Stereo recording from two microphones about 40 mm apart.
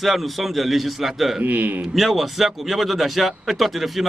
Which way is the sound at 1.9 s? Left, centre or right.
Centre.